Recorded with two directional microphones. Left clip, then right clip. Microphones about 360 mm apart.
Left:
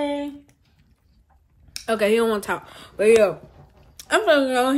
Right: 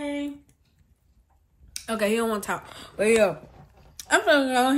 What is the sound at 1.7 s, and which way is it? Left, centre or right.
Speech, centre.